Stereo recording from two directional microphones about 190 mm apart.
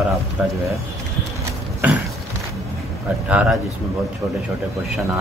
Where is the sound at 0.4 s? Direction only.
5° right (ahead or behind).